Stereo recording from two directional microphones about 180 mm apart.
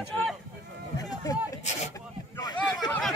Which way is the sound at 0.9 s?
20° left (ahead or behind).